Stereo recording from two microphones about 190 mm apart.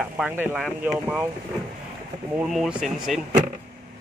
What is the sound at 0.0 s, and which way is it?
Speech, 5° right (ahead or behind).